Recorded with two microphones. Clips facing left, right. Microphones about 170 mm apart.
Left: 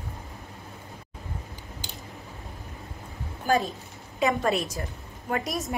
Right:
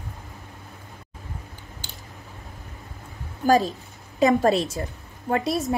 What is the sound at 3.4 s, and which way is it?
A woman's voice, 35° right (ahead or behind).